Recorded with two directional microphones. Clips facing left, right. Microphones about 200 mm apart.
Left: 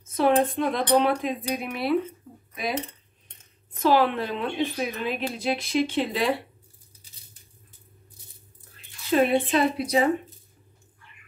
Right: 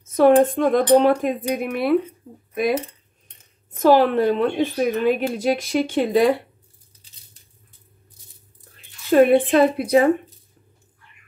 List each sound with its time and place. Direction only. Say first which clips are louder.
0.1 s a woman's voice: right 7 dB; 50° right (ahead or behind)
3.7 s a woman's voice: right 6 dB; 45° right (ahead or behind)
9.1 s a woman's voice: right 7 dB; 50° right (ahead or behind)